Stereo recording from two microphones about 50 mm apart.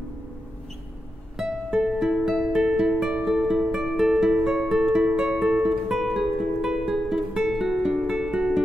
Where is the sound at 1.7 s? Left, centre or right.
Centre.